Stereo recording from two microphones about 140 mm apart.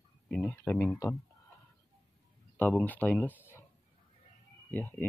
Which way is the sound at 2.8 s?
10° left (ahead or behind).